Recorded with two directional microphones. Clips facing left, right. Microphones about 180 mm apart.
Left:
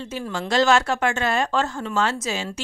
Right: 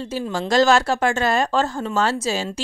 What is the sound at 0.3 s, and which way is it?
Speech, 40° right (ahead or behind).